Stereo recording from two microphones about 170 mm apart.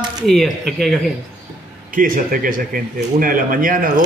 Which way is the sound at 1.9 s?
55° right (ahead or behind).